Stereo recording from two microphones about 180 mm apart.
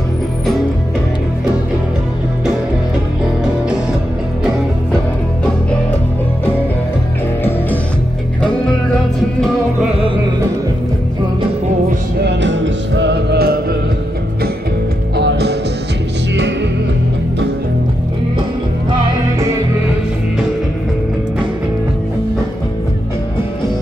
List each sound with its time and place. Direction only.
12.2 s music: 75° right (ahead or behind)
15.1 s music: 65° right (ahead or behind)